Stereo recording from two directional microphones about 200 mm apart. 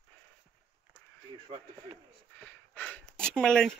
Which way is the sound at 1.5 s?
30° right (ahead or behind).